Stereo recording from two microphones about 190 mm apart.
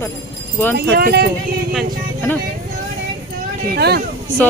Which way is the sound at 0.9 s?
55° right (ahead or behind).